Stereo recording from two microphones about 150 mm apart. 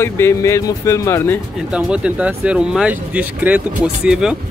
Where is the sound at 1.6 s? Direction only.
5° right (ahead or behind).